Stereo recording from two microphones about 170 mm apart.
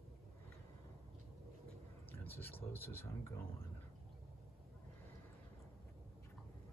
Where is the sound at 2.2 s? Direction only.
10° left (ahead or behind).